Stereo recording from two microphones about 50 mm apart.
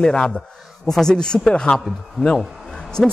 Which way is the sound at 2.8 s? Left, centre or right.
Centre.